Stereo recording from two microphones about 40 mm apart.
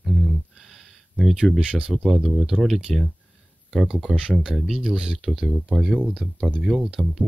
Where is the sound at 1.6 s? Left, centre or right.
Right.